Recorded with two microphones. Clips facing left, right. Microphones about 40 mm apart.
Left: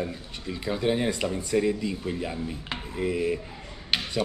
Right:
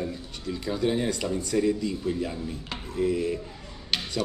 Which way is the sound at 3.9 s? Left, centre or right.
Centre.